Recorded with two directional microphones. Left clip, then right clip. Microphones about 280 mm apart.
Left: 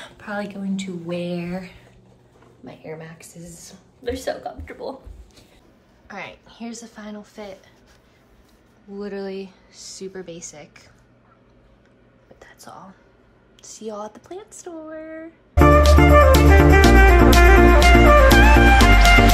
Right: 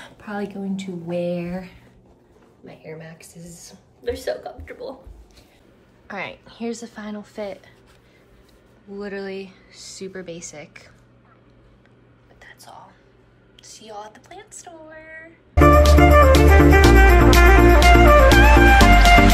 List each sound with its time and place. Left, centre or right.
0.0 s speech: centre
2.8 s speech: centre
6.0 s speech: centre
8.9 s speech: centre
12.4 s whispering: left
13.8 s speech: left
15.8 s music: centre